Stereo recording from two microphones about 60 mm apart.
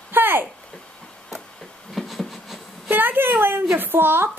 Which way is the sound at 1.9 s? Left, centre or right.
Centre.